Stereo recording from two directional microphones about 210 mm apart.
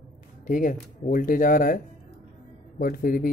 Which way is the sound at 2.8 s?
45° left (ahead or behind).